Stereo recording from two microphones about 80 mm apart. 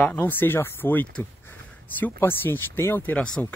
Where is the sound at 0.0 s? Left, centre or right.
Left.